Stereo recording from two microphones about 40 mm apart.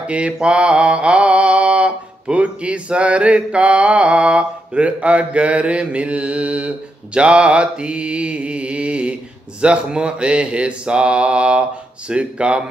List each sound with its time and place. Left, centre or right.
0.0 s mantra: right
7.2 s speech: right